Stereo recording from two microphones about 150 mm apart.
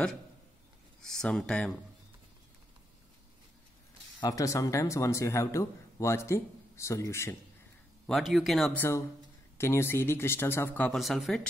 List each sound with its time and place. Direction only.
1.0 s speech: 5° left (ahead or behind)
4.2 s speech: 25° left (ahead or behind)
8.1 s speech: centre (ahead or behind)
8.7 s speech: 15° left (ahead or behind)
11.0 s speech: centre (ahead or behind)